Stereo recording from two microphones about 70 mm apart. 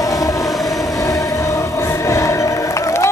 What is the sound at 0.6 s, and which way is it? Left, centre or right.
Train, left.